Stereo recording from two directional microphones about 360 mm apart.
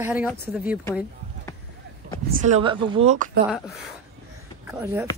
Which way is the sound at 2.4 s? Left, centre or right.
Centre.